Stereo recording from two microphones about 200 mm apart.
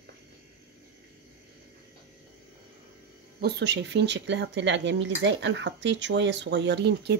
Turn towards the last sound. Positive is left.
turn(degrees=-55)  # may be behind; listen again after turning